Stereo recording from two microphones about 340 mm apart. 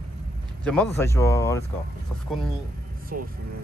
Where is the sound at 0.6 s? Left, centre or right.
Centre.